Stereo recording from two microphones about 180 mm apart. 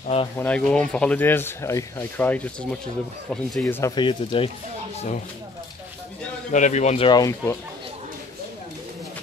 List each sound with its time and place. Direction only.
0.4 s speech: 5° left (ahead or behind)
3.8 s speech: 25° left (ahead or behind)
6.5 s speech: 40° left (ahead or behind)
7.1 s speech: 20° left (ahead or behind)